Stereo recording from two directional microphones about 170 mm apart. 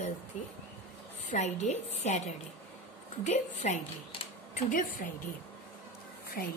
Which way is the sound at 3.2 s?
40° left (ahead or behind).